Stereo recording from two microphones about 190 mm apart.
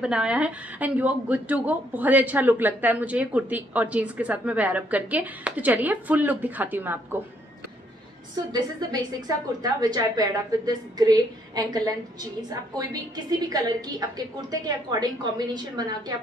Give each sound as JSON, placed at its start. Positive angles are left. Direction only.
{"t": 0.0, "sound": "a woman's voice", "side_deg": -5}
{"t": 8.5, "sound": "a woman's voice", "side_deg": -20}